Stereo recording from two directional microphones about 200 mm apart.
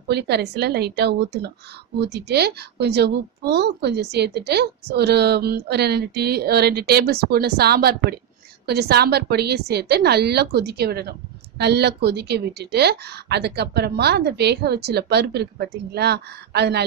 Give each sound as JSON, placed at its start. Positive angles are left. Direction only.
{"t": 0.1, "sound": "a woman's voice", "side_deg": -55}